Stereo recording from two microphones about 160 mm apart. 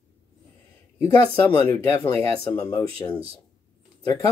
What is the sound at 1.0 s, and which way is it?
Speech, 10° left (ahead or behind).